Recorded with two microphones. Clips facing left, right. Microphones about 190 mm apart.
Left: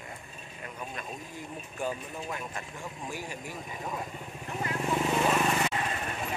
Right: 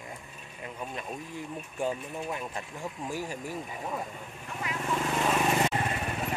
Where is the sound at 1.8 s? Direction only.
25° right (ahead or behind).